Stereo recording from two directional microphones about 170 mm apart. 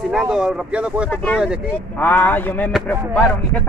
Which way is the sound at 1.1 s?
10° left (ahead or behind).